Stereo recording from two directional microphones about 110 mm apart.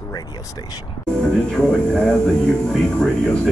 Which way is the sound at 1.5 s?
10° left (ahead or behind).